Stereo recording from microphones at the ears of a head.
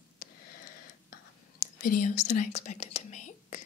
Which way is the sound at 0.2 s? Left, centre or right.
Left.